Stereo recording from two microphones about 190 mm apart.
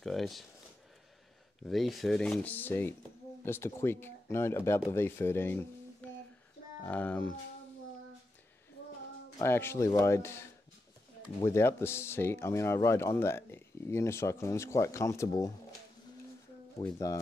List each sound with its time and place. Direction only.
0.0 s speech: centre (ahead or behind)
1.6 s speech: centre (ahead or behind)
9.4 s speech: 10° left (ahead or behind)
11.4 s speech: 15° left (ahead or behind)
16.8 s speech: 15° left (ahead or behind)